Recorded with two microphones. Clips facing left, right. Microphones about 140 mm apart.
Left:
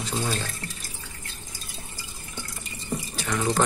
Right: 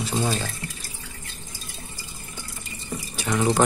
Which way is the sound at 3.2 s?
20° right (ahead or behind).